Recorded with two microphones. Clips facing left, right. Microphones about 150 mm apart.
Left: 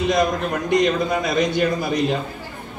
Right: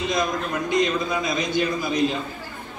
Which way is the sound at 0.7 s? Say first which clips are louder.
Left 4 dB; 65° left (ahead or behind).